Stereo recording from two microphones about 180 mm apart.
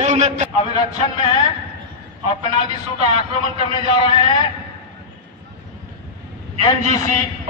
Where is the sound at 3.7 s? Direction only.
25° left (ahead or behind).